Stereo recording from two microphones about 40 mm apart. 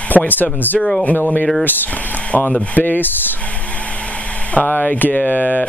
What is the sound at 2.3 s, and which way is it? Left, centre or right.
Speech, left.